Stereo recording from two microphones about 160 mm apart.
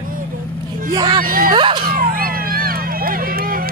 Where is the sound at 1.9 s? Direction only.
65° right (ahead or behind).